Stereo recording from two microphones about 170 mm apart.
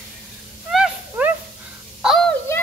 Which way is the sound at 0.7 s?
5° right (ahead or behind).